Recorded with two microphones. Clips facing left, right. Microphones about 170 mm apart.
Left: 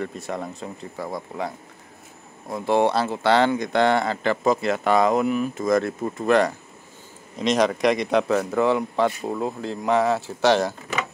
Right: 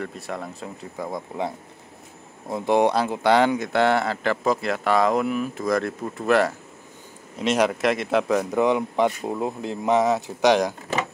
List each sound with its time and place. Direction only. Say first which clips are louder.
0.0 s speech: left 2 dB; centre (ahead or behind)
1.1 s speech: right 2 dB; 20° right (ahead or behind)
2.5 s a man's voice: right 1 dB; 15° right (ahead or behind)